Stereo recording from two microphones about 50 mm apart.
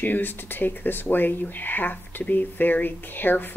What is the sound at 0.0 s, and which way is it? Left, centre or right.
A woman's voice, left.